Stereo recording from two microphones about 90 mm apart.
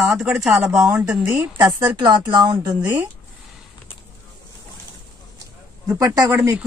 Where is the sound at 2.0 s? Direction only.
65° right (ahead or behind).